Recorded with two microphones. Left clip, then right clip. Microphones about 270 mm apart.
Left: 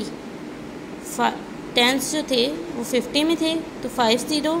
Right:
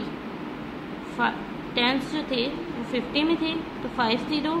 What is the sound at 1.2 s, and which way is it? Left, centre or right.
A woman's voice, left.